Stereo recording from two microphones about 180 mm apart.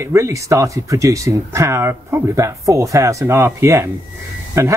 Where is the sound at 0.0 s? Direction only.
15° right (ahead or behind).